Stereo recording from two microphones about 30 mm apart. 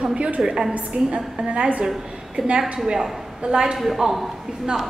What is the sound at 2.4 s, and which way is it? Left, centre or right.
A woman's voice, right.